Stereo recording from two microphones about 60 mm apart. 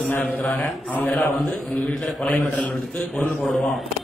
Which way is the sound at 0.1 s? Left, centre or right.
Left.